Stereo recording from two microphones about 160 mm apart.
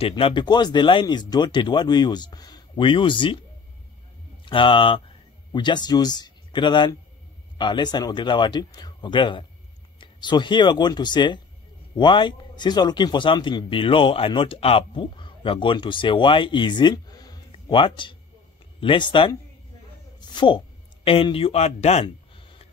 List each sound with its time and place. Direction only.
0.0 s speech: 30° left (ahead or behind)
4.5 s a man's voice: 30° left (ahead or behind)
20.2 s a sound: 30° left (ahead or behind)